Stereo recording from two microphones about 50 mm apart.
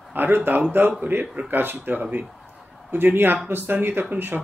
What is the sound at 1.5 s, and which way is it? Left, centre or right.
Speech, right.